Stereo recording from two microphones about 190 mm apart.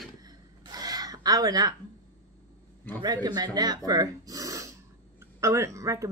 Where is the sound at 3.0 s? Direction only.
20° right (ahead or behind).